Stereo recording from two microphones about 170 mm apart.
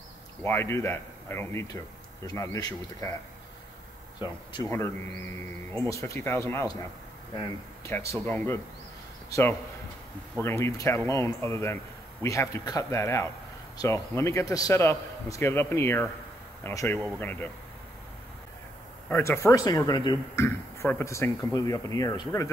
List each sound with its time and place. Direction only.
0.4 s a man's voice: 15° left (ahead or behind)
4.2 s speech: 25° left (ahead or behind)
5.7 s a man's voice: 15° left (ahead or behind)
19.0 s speech: 15° left (ahead or behind)